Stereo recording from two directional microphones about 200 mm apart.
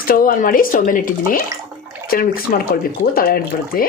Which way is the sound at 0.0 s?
45° left (ahead or behind).